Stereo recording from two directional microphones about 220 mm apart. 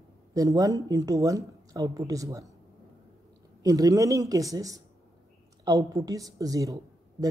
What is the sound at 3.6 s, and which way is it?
A woman's voice, 15° right (ahead or behind).